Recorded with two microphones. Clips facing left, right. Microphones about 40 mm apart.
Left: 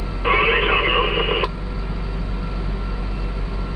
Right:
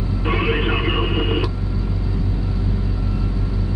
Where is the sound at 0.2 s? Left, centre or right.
Left.